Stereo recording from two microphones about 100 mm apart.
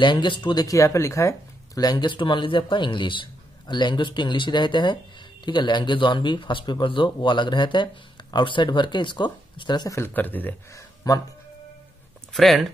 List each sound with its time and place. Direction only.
0.0 s speech: 50° left (ahead or behind)
0.7 s speech: 30° left (ahead or behind)
1.8 s speech: 45° left (ahead or behind)
9.8 s speech: 25° left (ahead or behind)
10.7 s speech: 35° left (ahead or behind)
12.3 s speech: centre (ahead or behind)